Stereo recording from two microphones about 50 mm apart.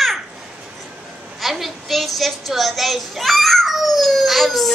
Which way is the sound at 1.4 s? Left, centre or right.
Centre.